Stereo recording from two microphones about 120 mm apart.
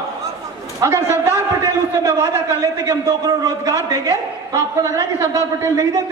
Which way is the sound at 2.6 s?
30° right (ahead or behind).